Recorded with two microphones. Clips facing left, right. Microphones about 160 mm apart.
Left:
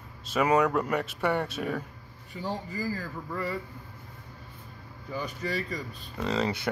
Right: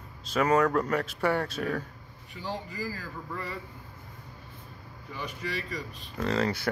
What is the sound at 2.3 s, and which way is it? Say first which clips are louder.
Speech: left 2 dB; 40° left (ahead or behind).